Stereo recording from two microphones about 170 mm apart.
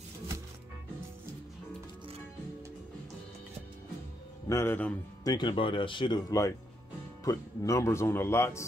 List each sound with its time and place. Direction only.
4.5 s speech: 15° left (ahead or behind)
5.2 s speech: 25° left (ahead or behind)